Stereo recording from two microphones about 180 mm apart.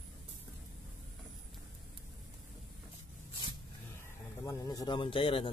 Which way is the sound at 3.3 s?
25° left (ahead or behind).